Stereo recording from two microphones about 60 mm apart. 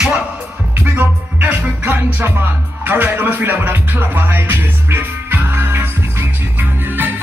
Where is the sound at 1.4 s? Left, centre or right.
Right.